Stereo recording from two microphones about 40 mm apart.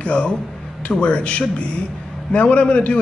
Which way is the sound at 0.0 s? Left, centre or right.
Left.